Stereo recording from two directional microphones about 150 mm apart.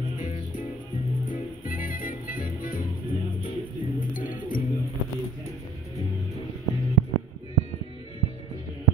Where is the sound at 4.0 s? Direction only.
65° left (ahead or behind).